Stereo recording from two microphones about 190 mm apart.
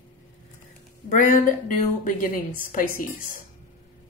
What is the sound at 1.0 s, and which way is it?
Speech, 45° left (ahead or behind).